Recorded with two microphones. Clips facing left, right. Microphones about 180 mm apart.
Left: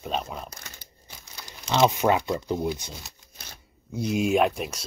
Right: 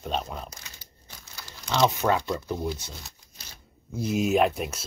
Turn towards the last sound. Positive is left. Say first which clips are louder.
# even
turn(degrees=0)  # may be behind; listen again after turning